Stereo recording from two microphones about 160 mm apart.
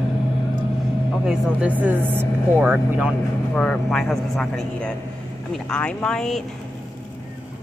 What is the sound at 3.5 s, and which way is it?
Speech, 5° left (ahead or behind).